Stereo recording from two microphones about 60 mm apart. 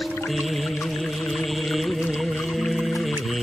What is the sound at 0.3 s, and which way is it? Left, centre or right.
Music, centre.